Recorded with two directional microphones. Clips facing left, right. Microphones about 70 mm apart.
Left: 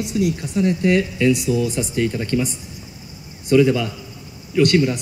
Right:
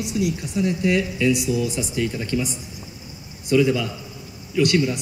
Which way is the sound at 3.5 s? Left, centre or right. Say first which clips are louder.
Left 3 dB; left.